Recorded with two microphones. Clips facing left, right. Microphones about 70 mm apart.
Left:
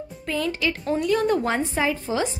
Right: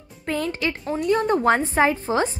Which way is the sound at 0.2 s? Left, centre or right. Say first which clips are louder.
Right 1 dB; right.